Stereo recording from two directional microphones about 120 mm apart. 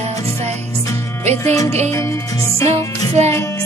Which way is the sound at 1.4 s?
25° left (ahead or behind).